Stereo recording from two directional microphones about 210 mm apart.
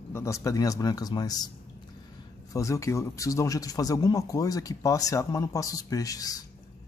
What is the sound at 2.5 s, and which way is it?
Speech, 15° left (ahead or behind).